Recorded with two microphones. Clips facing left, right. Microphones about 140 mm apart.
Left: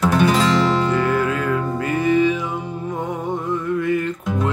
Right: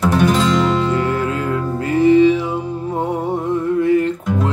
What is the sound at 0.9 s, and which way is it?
Music, 30° right (ahead or behind).